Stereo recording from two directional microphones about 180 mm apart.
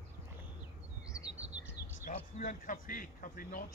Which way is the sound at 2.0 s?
45° left (ahead or behind).